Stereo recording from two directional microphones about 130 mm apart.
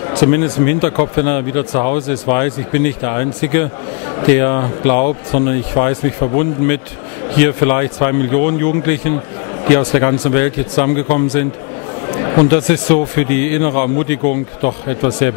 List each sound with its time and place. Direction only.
0.1 s a man's voice: 15° left (ahead or behind)